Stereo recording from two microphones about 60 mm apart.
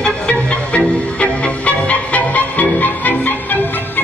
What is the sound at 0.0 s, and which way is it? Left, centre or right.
Music, centre.